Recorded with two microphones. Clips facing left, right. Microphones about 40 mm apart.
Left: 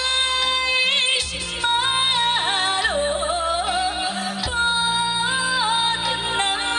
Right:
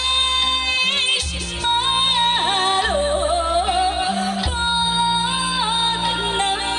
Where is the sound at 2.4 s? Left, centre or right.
Centre.